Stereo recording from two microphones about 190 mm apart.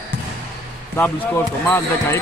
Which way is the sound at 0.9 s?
10° left (ahead or behind).